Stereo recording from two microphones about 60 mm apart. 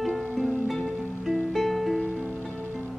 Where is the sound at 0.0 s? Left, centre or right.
Centre.